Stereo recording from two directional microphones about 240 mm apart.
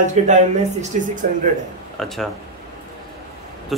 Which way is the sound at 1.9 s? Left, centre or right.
Centre.